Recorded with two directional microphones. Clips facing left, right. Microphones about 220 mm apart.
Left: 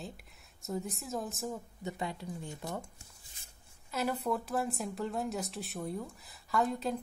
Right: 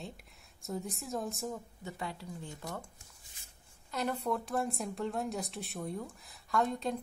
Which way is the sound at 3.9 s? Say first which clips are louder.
Left 1 dB; 5° left (ahead or behind).